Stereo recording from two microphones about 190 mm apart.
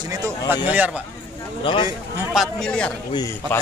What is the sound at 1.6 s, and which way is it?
Speech, 25° left (ahead or behind).